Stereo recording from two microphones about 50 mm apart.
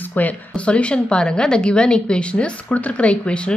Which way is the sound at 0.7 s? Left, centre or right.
Left.